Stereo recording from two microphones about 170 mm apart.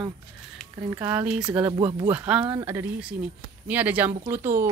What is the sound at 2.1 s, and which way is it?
Speech, 10° right (ahead or behind).